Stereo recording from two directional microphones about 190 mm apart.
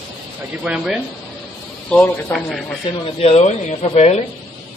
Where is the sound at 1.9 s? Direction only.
10° left (ahead or behind).